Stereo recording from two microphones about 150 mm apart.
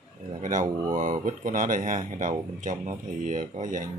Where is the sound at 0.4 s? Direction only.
55° right (ahead or behind).